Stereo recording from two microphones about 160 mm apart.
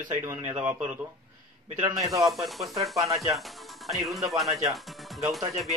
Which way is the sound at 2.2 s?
Centre (ahead or behind).